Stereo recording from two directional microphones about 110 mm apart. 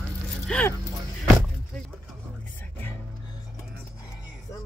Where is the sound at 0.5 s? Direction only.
10° left (ahead or behind).